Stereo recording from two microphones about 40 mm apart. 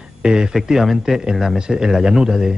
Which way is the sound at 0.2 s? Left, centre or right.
Centre.